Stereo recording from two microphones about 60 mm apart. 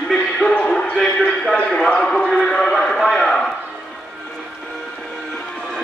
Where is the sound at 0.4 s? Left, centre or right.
Centre.